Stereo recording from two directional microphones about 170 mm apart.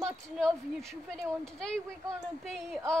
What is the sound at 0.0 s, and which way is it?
A woman's voice, centre (ahead or behind).